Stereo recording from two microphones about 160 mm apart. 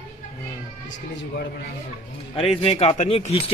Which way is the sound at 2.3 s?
35° left (ahead or behind).